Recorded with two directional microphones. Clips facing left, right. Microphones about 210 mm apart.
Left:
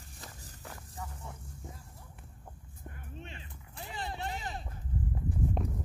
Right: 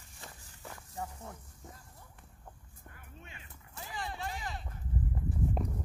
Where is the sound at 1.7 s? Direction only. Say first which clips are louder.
Right 2 dB; centre (ahead or behind).